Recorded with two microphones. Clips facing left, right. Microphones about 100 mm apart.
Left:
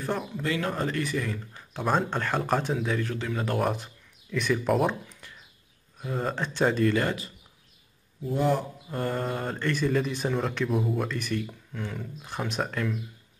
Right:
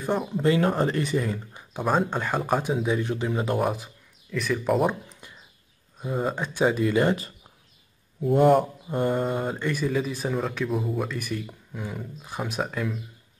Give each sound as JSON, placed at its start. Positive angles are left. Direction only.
{"t": 0.2, "sound": "speech", "side_deg": -30}
{"t": 3.6, "sound": "speech", "side_deg": -5}
{"t": 5.9, "sound": "speech", "side_deg": -10}
{"t": 8.2, "sound": "a man's voice", "side_deg": -55}
{"t": 9.0, "sound": "speech", "side_deg": -10}